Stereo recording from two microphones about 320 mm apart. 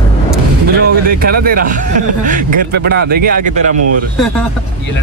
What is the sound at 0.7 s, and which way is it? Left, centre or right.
Speech, right.